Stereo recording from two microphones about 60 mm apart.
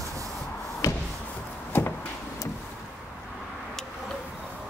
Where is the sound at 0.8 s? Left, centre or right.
Left.